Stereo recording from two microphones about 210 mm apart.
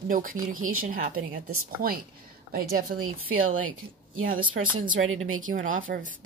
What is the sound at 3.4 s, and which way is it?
Speech, 75° right (ahead or behind).